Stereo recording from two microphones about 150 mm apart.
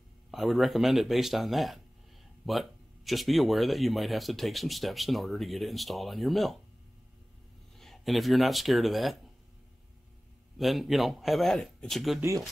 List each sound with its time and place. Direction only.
0.3 s speech: centre (ahead or behind)
7.7 s speech: centre (ahead or behind)
10.6 s speech: centre (ahead or behind)
12.2 s speech: 20° right (ahead or behind)